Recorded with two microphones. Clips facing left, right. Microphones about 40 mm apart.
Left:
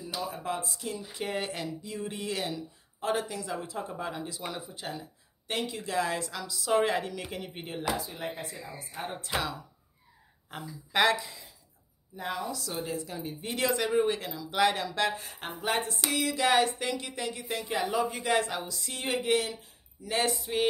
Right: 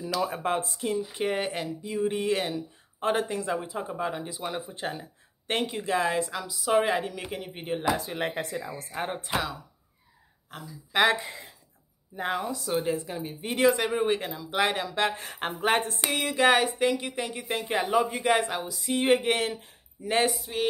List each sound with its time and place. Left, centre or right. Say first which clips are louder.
0.2 s speech: right 5 dB; right
3.6 s speech: right 4 dB; centre
4.5 s speech: right 5 dB; right
6.2 s a woman's voice: right 3 dB; centre
8.1 s speech: right 7 dB; right
9.0 s speech: right 3 dB; right
10.5 s speech: left 1 dB; centre
11.1 s speech: right 3 dB; right
12.6 s speech: right 7 dB; right
15.1 s speech: right 6 dB; right
16.5 s speech: right 3 dB; centre
18.7 s a woman's voice: right 10 dB; centre
19.0 s speech: right 4 dB; right
20.5 s music: left 1 dB; centre